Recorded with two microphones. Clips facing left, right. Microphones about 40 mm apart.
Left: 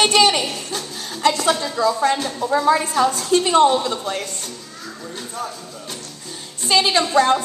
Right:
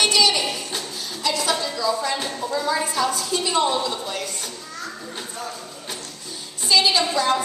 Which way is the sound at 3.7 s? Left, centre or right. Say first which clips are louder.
Left 4 dB; left.